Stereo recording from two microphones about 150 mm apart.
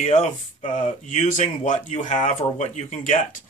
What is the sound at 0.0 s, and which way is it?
Speech, 50° left (ahead or behind).